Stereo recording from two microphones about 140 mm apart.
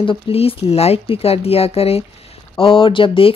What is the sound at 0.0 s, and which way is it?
Speech, 40° left (ahead or behind).